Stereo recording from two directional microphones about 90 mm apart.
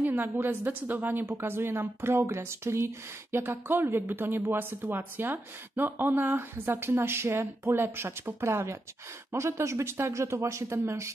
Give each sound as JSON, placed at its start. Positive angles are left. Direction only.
{"t": 0.0, "sound": "speech", "side_deg": -25}